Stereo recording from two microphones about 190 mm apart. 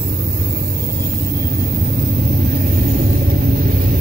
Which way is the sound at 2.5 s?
50° right (ahead or behind).